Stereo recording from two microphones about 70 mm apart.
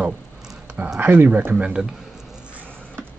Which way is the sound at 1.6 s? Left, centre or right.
Centre.